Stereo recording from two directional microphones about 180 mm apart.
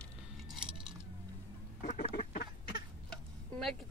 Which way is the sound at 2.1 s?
55° left (ahead or behind).